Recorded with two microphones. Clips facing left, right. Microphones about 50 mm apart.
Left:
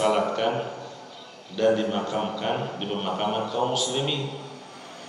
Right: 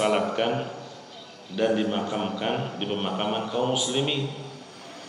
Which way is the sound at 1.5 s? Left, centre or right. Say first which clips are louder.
Left 2 dB; centre.